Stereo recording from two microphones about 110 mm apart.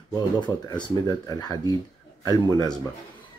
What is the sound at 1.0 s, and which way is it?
Speech, 35° left (ahead or behind).